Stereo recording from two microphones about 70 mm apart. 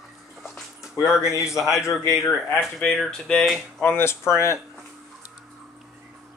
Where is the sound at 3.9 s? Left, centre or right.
Left.